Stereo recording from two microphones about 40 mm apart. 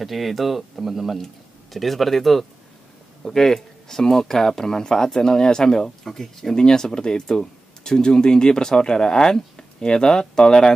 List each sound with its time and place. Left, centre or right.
0.0 s speech: centre
6.5 s speech: centre